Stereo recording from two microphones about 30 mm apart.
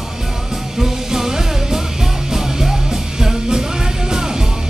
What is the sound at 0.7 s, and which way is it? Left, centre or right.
Music, centre.